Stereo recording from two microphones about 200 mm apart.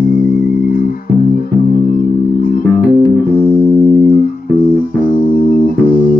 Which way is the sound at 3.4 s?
25° right (ahead or behind).